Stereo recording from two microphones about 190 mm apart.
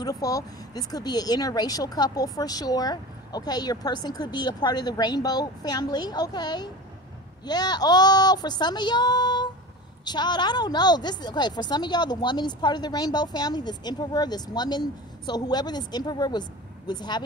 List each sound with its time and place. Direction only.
0.0 s speech: 20° left (ahead or behind)